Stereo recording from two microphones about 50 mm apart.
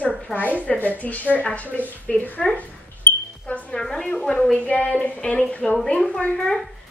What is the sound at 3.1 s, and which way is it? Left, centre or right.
Music, left.